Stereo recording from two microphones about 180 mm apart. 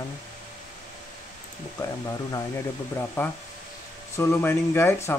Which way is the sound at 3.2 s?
15° left (ahead or behind).